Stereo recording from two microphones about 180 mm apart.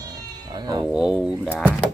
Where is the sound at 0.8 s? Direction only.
5° right (ahead or behind).